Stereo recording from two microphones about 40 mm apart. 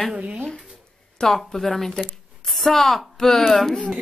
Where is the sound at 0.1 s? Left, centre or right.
Right.